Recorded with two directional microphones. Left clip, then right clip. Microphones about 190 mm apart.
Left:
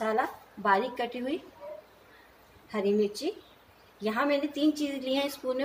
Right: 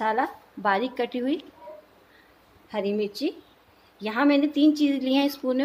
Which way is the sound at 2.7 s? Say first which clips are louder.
Even; 55° right (ahead or behind).